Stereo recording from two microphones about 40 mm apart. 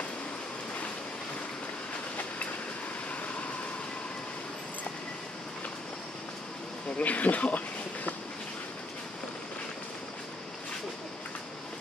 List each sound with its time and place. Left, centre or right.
7.0 s speech: left